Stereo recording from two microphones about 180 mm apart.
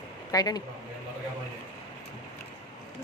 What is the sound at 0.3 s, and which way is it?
Speech, 20° left (ahead or behind).